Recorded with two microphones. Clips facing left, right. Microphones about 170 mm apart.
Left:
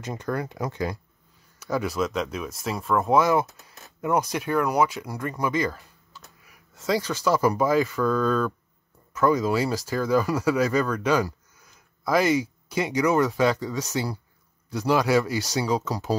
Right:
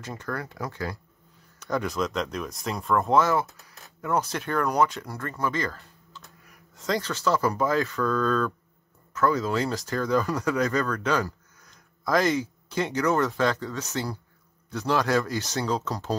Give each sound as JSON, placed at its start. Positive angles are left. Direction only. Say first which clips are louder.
{"t": 0.0, "sound": "speech", "louder": "left 4 dB", "side_deg": 20}
{"t": 1.6, "sound": "speech", "louder": "left 2 dB", "side_deg": 5}